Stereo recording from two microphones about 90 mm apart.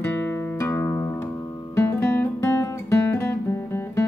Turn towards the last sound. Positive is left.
turn(degrees=30)  # may be behind; listen again after turning